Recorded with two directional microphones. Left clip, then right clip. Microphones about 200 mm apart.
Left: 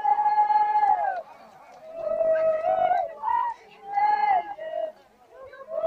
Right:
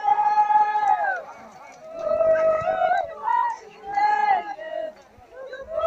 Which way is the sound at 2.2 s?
50° right (ahead or behind).